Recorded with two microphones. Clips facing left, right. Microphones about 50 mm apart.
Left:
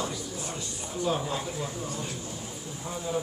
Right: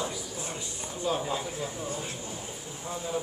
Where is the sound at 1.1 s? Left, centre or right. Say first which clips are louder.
Left 1 dB; centre.